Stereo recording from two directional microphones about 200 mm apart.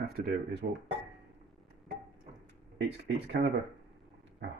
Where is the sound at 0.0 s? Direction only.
50° right (ahead or behind).